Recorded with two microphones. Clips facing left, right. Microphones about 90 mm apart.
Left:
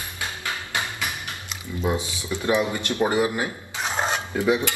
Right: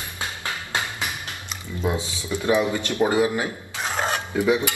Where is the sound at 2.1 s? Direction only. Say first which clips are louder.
Right 2 dB; 20° right (ahead or behind).